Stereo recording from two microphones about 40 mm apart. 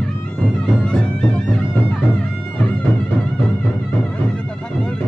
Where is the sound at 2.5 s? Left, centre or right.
Left.